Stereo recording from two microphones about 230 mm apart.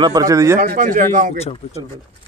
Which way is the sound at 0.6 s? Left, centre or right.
Right.